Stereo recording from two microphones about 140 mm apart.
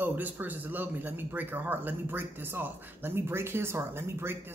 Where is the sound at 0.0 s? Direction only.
15° right (ahead or behind).